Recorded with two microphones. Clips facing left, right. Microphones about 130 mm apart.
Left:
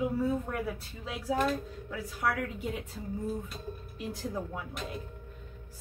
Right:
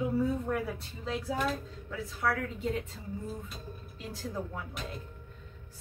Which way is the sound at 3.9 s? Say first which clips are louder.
Left 2 dB; 20° left (ahead or behind).